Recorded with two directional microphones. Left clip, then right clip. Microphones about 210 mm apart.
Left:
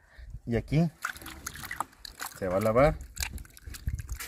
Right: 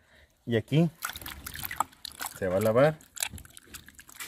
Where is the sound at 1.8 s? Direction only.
25° right (ahead or behind); by 4.2 s 5° right (ahead or behind).